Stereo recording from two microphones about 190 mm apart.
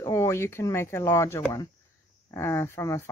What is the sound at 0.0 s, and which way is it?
Speech, 15° left (ahead or behind).